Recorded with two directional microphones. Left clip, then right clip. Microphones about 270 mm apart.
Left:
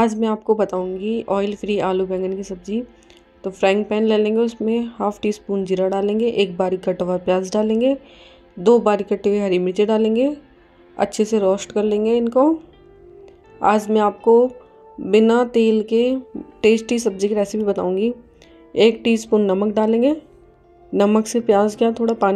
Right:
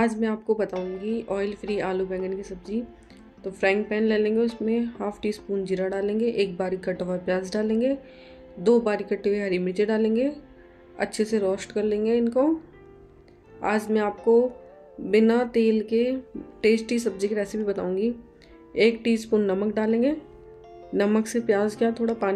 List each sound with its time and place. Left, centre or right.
0.0 s a woman's voice: left
13.6 s a woman's voice: left